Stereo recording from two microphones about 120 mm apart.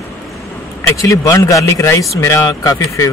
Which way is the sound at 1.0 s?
25° left (ahead or behind).